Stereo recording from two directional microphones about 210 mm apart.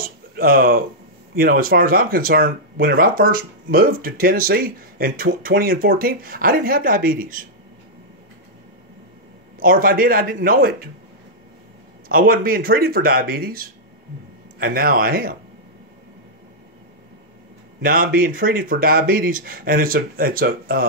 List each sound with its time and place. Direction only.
0.0 s speech: 45° right (ahead or behind)
9.6 s speech: 40° right (ahead or behind)
12.1 s speech: 45° right (ahead or behind)
17.8 s speech: 40° right (ahead or behind)